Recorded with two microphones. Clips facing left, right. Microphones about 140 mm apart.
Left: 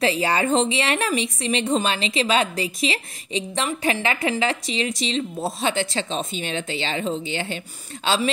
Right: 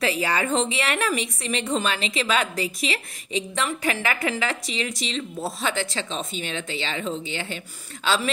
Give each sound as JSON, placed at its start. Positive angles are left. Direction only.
{"t": 0.0, "sound": "a woman's voice", "side_deg": 25}